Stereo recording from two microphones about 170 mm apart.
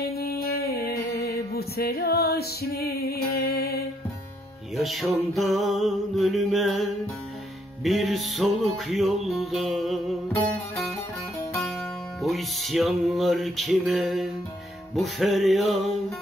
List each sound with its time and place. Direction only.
0.0 s music: 65° left (ahead or behind)
4.7 s music: centre (ahead or behind)
12.2 s music: centre (ahead or behind)